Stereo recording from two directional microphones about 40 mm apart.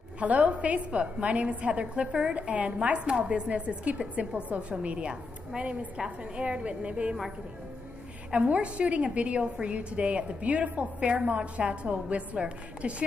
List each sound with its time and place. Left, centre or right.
0.2 s a woman's voice: right
8.3 s a woman's voice: right